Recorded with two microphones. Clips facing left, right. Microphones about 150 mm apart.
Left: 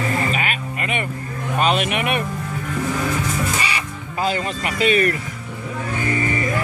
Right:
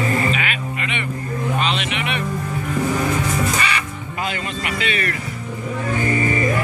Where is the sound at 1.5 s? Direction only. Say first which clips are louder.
Left 8 dB; 45° left (ahead or behind).